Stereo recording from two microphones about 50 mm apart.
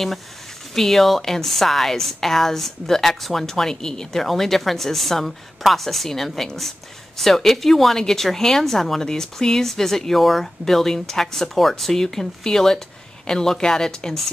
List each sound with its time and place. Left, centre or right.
0.7 s a woman's voice: centre